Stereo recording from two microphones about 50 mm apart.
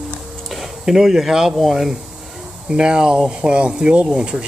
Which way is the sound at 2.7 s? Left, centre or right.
Centre.